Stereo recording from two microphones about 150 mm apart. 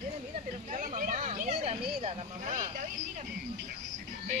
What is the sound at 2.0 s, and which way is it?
Speech, 50° right (ahead or behind).